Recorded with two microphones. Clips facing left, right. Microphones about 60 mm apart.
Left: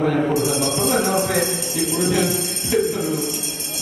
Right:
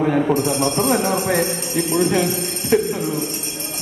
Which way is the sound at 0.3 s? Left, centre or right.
Right.